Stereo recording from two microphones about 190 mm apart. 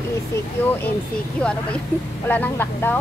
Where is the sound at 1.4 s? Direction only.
5° left (ahead or behind).